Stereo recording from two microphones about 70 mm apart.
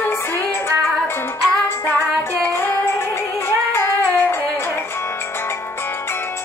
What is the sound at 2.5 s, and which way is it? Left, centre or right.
Music, left.